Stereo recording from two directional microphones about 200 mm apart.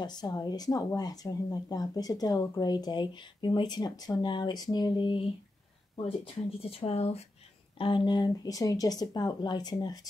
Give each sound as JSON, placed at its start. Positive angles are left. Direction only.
{"t": 0.0, "sound": "speech", "side_deg": 20}
{"t": 6.8, "sound": "speech", "side_deg": 30}